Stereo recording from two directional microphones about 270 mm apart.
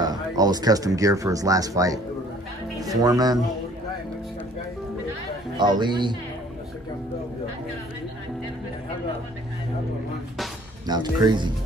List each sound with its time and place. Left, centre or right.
0.0 s speech: centre
5.6 s speech: centre
10.9 s speech: centre